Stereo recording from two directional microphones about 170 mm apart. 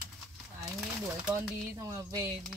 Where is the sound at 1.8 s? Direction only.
20° right (ahead or behind).